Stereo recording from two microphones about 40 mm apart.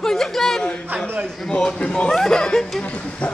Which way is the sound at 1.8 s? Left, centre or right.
Left.